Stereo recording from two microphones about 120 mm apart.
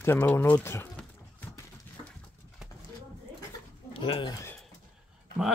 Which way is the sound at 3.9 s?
45° left (ahead or behind).